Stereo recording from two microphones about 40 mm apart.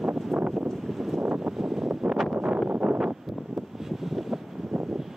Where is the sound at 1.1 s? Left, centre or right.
Right.